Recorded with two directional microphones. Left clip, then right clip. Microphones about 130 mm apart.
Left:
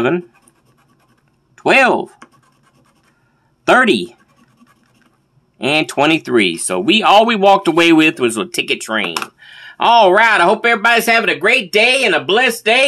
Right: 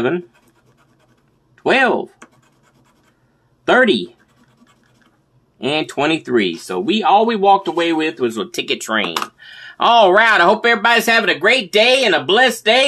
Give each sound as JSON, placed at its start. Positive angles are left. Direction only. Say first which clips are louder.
{"t": 1.5, "sound": "speech", "louder": "left 3 dB", "side_deg": 25}
{"t": 3.6, "sound": "speech", "louder": "left 2 dB", "side_deg": 25}
{"t": 5.6, "sound": "speech", "louder": "left 4 dB", "side_deg": 25}
{"t": 6.8, "sound": "speech", "louder": "left 5 dB", "side_deg": 40}
{"t": 7.1, "sound": "speech", "louder": "left 2 dB", "side_deg": 75}
{"t": 8.5, "sound": "speech", "louder": "left 3 dB", "side_deg": 20}
{"t": 8.7, "sound": "speech", "louder": "even", "side_deg": 5}